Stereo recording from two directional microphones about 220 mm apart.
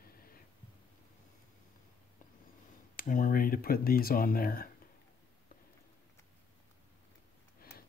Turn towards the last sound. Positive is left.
turn(degrees=45)  # may be behind; listen again after turning